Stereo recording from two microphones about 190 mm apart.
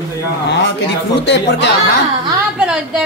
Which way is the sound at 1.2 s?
65° left (ahead or behind).